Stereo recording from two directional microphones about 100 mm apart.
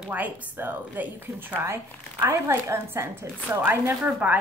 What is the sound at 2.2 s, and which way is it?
A woman's voice, 30° right (ahead or behind).